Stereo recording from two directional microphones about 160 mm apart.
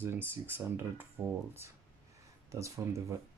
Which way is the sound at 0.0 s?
15° right (ahead or behind).